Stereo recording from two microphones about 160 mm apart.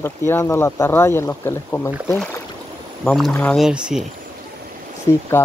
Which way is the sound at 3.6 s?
5° right (ahead or behind).